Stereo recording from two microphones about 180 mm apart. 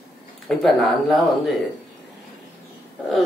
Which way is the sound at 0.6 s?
Centre (ahead or behind).